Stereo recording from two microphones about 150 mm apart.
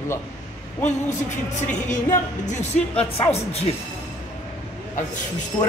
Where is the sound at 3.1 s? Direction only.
40° left (ahead or behind).